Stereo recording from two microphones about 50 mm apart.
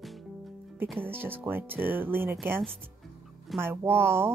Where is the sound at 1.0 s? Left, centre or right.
Right.